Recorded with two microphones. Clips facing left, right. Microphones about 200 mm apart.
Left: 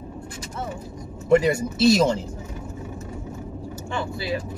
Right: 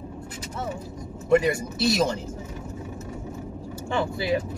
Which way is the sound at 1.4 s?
25° left (ahead or behind).